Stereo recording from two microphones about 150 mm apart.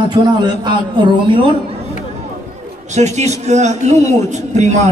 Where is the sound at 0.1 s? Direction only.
30° right (ahead or behind).